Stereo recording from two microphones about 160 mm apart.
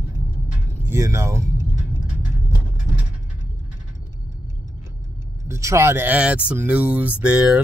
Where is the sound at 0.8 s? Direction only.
15° right (ahead or behind).